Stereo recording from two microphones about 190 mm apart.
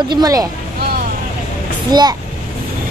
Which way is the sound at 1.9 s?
20° right (ahead or behind).